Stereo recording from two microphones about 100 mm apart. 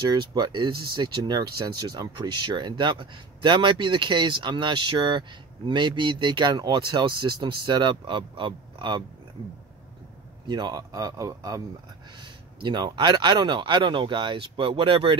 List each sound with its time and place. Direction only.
0.1 s speech: 45° right (ahead or behind)
10.4 s a man's voice: 45° right (ahead or behind)
12.2 s speech: 50° right (ahead or behind)